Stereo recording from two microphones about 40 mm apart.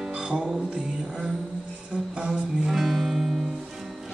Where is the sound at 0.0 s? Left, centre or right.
Right.